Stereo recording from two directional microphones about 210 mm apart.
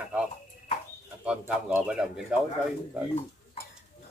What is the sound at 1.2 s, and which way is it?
Speech, 5° right (ahead or behind).